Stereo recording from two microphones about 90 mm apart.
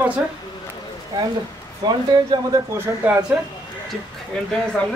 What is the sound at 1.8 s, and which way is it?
Speech, 55° right (ahead or behind).